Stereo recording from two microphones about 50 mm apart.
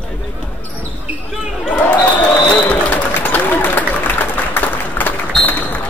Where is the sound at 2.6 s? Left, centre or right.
Left.